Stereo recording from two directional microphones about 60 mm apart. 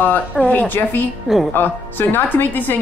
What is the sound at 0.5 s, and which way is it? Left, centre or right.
Speech, left.